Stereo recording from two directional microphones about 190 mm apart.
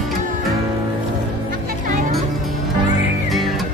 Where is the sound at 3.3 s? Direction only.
Centre (ahead or behind).